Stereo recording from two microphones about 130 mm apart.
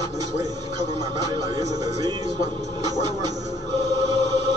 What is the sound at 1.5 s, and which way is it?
Speech, 30° right (ahead or behind).